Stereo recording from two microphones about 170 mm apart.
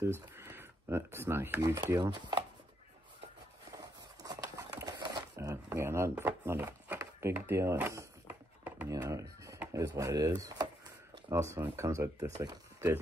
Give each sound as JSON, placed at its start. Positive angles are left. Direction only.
{"t": 0.0, "sound": "speech", "side_deg": -15}
{"t": 3.7, "sound": "a sound", "side_deg": -20}
{"t": 11.2, "sound": "speech", "side_deg": -15}